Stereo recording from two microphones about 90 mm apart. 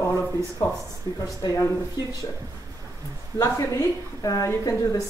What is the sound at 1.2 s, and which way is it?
Speech, 45° left (ahead or behind).